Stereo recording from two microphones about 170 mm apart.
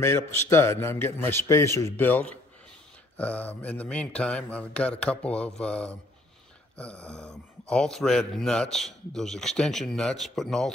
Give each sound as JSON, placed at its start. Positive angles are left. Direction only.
{"t": 0.0, "sound": "a man's voice", "side_deg": 15}